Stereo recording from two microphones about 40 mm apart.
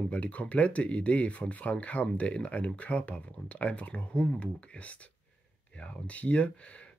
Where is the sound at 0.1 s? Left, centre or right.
Left.